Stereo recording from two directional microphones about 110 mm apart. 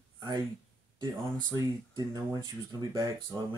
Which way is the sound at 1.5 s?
35° right (ahead or behind).